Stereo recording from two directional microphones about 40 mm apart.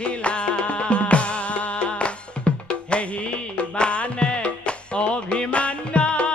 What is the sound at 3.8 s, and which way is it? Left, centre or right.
Music, left.